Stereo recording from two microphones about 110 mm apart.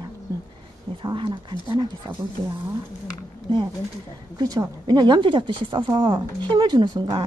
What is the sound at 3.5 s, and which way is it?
Speech, 50° right (ahead or behind).